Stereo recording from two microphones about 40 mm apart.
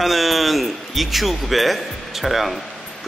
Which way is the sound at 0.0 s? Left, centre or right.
Centre.